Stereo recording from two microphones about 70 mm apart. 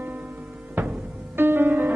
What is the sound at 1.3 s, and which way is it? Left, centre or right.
Music, right.